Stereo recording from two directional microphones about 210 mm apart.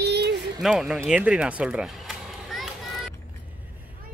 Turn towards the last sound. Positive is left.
turn(degrees=0)  # may be behind; listen again after turning